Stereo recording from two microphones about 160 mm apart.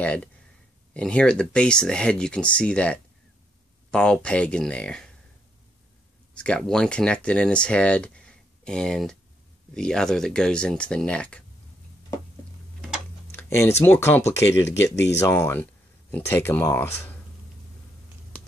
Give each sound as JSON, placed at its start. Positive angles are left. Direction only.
{"t": 0.0, "sound": "speech", "side_deg": 10}
{"t": 6.3, "sound": "speech", "side_deg": 5}
{"t": 13.3, "sound": "a sound", "side_deg": 15}
{"t": 13.8, "sound": "speech", "side_deg": 15}